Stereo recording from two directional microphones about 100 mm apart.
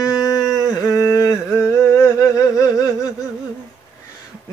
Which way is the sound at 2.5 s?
35° left (ahead or behind).